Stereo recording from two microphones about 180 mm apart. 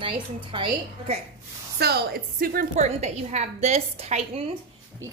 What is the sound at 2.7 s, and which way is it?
A woman's voice, 40° right (ahead or behind).